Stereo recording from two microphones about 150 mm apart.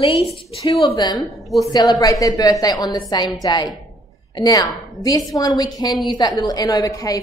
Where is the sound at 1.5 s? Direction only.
Centre (ahead or behind).